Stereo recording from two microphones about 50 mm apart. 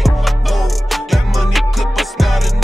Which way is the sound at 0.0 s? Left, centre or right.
Centre.